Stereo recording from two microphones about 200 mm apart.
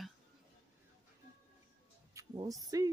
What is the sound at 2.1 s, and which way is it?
Speech, 15° right (ahead or behind).